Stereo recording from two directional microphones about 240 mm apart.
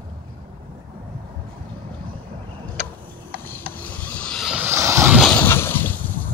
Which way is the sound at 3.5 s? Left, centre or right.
Centre.